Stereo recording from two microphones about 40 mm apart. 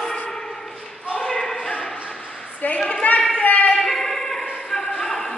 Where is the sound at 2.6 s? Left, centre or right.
Left.